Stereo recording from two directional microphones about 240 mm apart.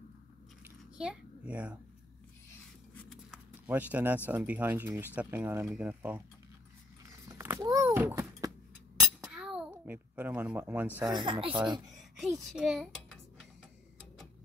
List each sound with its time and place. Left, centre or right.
0.9 s a child's voice: centre
2.9 s a sound: centre
4.3 s speech: centre
7.1 s a sound: centre
11.0 s speech: centre
12.2 s a child's voice: centre